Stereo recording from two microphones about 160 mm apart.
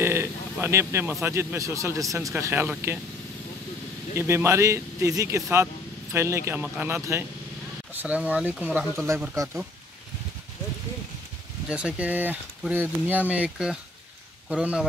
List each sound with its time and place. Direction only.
0.0 s a sound: 15° right (ahead or behind)
1.2 s speech: 15° right (ahead or behind)
4.1 s speech: 15° right (ahead or behind)
8.7 s speech: 15° right (ahead or behind)
11.7 s speech: 10° right (ahead or behind)